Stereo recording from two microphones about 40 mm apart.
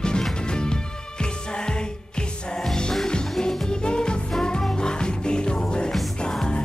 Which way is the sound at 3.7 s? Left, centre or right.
Left.